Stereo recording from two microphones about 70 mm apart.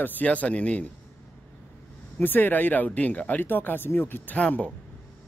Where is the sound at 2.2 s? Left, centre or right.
Left.